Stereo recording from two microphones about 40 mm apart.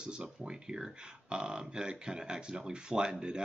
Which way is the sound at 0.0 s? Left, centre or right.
Right.